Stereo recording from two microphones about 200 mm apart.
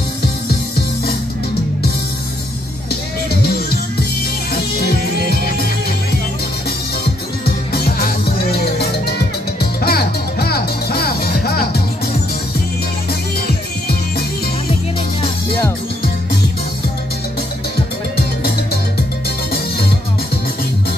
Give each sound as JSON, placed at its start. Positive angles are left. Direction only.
{"t": 4.5, "sound": "music", "side_deg": 50}
{"t": 7.4, "sound": "music", "side_deg": 50}
{"t": 18.1, "sound": "music", "side_deg": 50}